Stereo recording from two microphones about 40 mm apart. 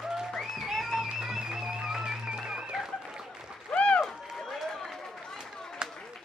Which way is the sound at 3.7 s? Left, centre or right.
Left.